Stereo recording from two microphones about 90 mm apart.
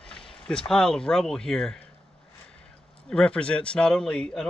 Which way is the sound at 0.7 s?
5° left (ahead or behind).